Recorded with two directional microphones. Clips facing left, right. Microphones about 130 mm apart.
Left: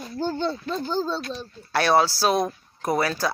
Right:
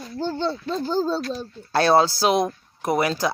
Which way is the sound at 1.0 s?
40° right (ahead or behind).